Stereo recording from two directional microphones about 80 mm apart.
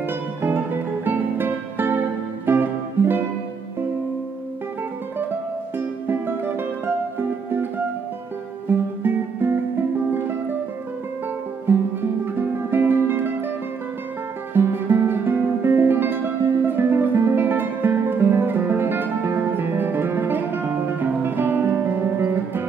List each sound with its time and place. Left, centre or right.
0.4 s music: right
5.8 s music: right
8.6 s music: right
11.6 s music: right
14.5 s music: right